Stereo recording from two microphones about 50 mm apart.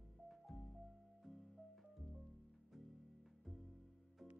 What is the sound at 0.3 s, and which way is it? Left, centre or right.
Music, centre.